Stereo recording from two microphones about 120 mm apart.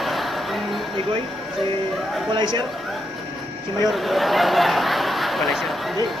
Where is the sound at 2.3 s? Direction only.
40° right (ahead or behind).